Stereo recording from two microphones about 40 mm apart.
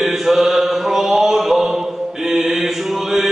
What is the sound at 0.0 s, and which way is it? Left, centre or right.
Mantra, centre.